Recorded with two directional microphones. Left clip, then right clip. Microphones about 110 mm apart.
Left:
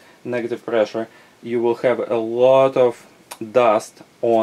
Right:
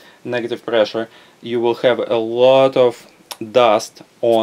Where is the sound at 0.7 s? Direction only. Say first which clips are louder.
Right 3 dB; 35° right (ahead or behind).